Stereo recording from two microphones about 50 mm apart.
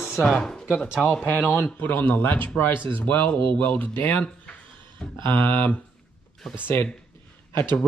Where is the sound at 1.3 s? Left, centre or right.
Left.